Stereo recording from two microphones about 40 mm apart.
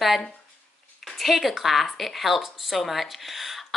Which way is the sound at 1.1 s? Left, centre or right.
Centre.